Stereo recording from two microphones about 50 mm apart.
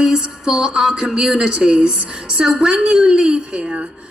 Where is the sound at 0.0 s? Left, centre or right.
Centre.